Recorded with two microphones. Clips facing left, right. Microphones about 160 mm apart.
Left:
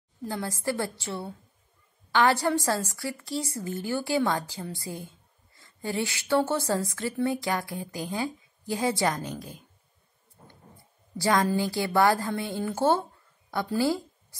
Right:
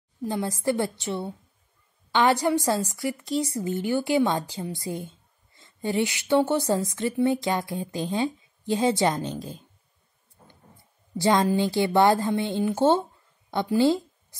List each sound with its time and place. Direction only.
0.2 s a woman's voice: 20° right (ahead or behind)
11.1 s a woman's voice: 20° right (ahead or behind)